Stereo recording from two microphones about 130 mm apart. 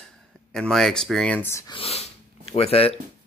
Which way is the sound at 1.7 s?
45° left (ahead or behind).